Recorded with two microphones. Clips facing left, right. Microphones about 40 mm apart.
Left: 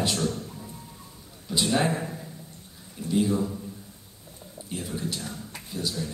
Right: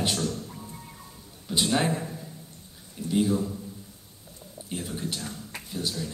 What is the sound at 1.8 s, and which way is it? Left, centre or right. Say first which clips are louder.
Speech: left 1 dB; left.